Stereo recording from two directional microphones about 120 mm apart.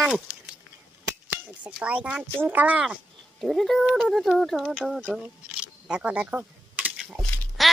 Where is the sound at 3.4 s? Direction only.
Centre (ahead or behind).